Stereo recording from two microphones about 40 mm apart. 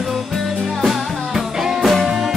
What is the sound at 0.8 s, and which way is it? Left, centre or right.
Music, centre.